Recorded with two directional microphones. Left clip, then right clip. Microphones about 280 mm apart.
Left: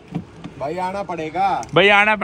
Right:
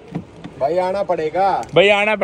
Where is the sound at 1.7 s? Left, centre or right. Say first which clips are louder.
Left 2 dB; centre.